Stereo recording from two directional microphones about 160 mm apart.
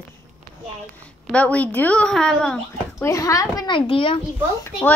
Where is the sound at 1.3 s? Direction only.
10° left (ahead or behind).